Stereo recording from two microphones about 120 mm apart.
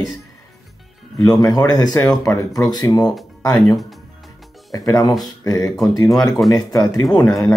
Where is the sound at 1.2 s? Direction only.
30° left (ahead or behind).